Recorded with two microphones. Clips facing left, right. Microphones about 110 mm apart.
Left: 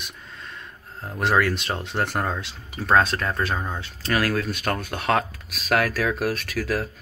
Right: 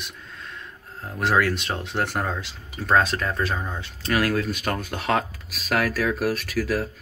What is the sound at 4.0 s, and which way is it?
Speech, 20° right (ahead or behind).